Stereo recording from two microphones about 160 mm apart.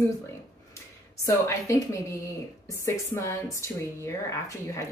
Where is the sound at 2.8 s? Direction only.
15° left (ahead or behind).